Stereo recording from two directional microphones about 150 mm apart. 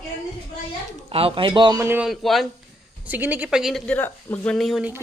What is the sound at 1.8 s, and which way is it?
Speech, 15° right (ahead or behind).